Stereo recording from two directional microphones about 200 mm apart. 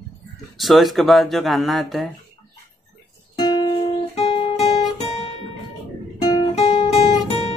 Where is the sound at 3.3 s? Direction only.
20° left (ahead or behind).